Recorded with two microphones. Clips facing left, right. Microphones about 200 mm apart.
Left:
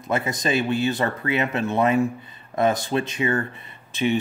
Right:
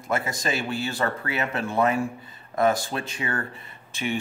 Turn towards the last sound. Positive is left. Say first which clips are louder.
# left 6 dB
turn(degrees=20)  # may be behind; listen again after turning